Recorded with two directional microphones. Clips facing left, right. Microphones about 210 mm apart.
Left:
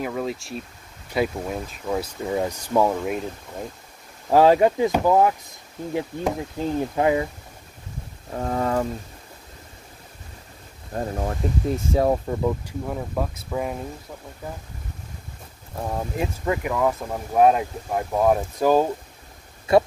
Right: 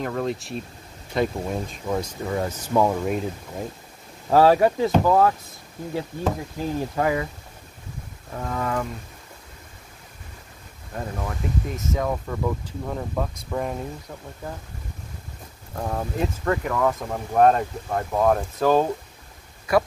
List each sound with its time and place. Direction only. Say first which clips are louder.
0.0 s speech: right 1 dB; 5° left (ahead or behind)
4.3 s speech: left 1 dB; 15° left (ahead or behind)
8.3 s speech: left 4 dB; 35° left (ahead or behind)
10.9 s speech: left 4 dB; 35° left (ahead or behind)
12.4 s speech: left 2 dB; 10° left (ahead or behind)
15.8 s speech: even; 5° left (ahead or behind)
19.7 s speech: left 3 dB; 25° left (ahead or behind)